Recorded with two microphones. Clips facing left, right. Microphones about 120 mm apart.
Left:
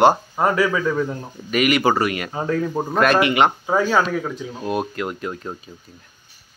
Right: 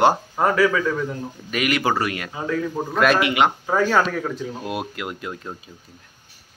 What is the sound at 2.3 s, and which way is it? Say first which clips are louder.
Speech: left 3 dB; 40° left (ahead or behind).